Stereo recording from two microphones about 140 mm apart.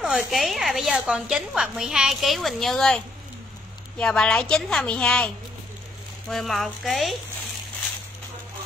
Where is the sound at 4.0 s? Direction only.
5° left (ahead or behind).